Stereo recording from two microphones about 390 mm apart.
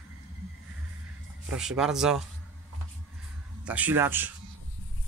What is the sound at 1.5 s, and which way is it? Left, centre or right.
Speech, centre.